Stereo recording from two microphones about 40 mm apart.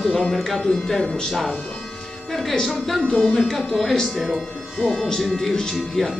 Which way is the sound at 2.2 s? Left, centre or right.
Centre.